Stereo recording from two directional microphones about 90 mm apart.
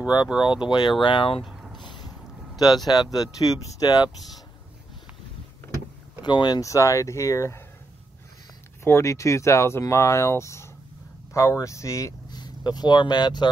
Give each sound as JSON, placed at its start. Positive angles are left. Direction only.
{"t": 0.3, "sound": "speech", "side_deg": -10}
{"t": 0.7, "sound": "speech", "side_deg": 55}
{"t": 1.0, "sound": "speech", "side_deg": 80}
{"t": 1.4, "sound": "a sound", "side_deg": -5}
{"t": 1.8, "sound": "mechanisms", "side_deg": 60}
{"t": 2.9, "sound": "speech", "side_deg": 50}
{"t": 6.2, "sound": "speech", "side_deg": 55}
{"t": 6.6, "sound": "speech", "side_deg": 35}
{"t": 8.8, "sound": "speech", "side_deg": 30}
{"t": 12.3, "sound": "speech", "side_deg": 50}